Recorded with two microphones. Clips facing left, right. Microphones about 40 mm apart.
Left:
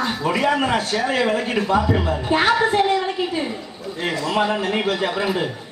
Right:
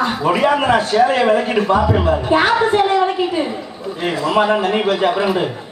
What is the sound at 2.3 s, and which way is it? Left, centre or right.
Speech, centre.